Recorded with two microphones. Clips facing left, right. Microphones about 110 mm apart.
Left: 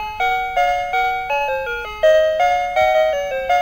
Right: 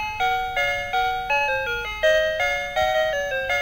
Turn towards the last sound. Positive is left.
turn(degrees=35)  # may be behind; listen again after turning